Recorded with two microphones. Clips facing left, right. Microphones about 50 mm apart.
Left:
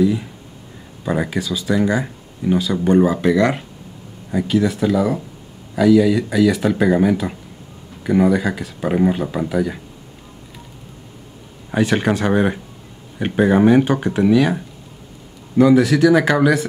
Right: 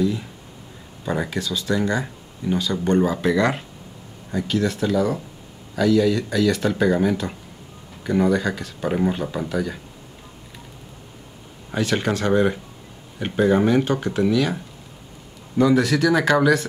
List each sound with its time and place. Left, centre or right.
0.0 s speech: centre
11.7 s speech: centre